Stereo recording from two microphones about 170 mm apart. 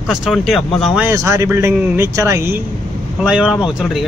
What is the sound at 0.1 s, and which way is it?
Speech, centre (ahead or behind).